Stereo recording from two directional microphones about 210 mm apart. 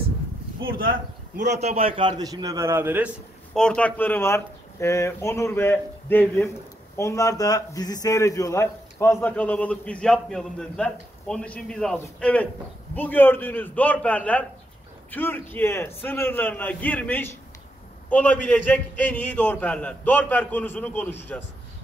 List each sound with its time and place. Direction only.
0.9 s a man's voice: 35° right (ahead or behind); by 3.1 s 10° right (ahead or behind)
3.5 s a man's voice: 5° left (ahead or behind)